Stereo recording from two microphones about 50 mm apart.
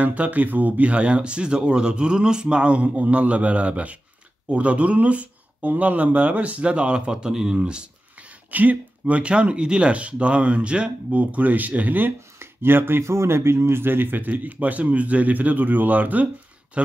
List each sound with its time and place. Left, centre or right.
0.0 s speech: right
8.5 s speech: right
12.4 s speech: right